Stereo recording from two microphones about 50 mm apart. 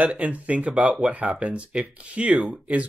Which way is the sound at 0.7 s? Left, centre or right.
Centre.